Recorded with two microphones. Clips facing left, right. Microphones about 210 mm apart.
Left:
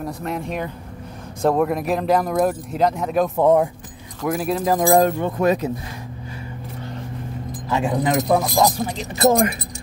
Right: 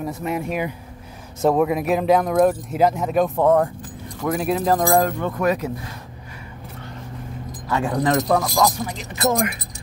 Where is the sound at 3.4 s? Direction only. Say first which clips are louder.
Left 3 dB; 10° left (ahead or behind).